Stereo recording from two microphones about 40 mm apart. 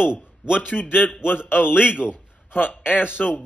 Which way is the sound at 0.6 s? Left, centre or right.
Left.